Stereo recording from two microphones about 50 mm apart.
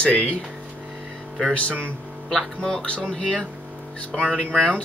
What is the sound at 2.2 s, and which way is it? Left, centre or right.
Speech, centre.